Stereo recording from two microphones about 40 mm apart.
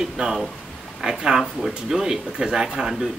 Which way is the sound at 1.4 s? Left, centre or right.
Centre.